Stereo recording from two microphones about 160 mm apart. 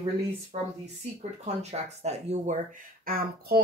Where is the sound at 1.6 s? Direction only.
45° right (ahead or behind).